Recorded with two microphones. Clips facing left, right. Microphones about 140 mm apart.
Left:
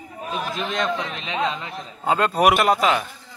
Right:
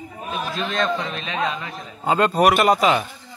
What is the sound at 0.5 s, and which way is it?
A man's voice, 15° left (ahead or behind).